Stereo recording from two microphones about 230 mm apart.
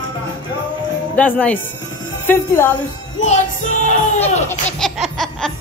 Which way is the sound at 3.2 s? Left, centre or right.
Left.